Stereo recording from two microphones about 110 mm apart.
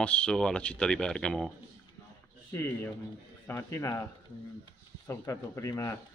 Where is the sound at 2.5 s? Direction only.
20° left (ahead or behind).